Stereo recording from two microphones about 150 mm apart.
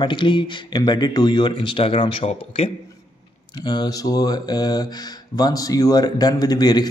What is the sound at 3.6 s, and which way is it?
A man's voice, 30° left (ahead or behind).